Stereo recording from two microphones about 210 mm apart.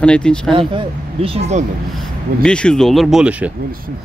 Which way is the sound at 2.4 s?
5° left (ahead or behind).